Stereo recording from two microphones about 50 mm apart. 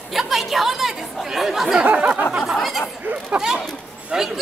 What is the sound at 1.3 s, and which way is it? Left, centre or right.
Speech, centre.